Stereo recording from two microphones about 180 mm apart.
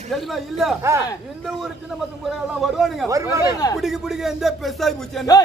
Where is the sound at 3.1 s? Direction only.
15° right (ahead or behind).